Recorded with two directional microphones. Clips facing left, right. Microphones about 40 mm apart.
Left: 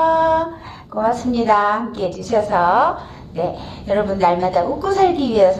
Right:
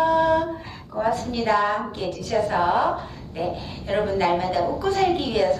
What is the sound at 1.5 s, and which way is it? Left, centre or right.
A woman's voice, left.